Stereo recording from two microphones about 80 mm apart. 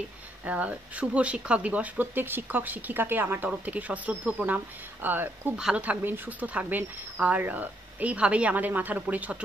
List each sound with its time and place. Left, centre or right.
0.5 s speech: centre